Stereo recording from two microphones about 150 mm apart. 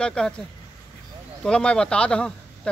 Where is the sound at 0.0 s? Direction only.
5° left (ahead or behind).